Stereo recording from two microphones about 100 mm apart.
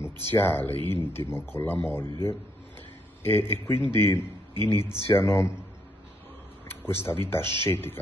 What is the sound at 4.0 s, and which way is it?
A man's voice, 25° left (ahead or behind).